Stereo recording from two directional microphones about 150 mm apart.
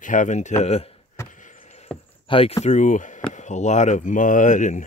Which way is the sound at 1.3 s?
60° left (ahead or behind).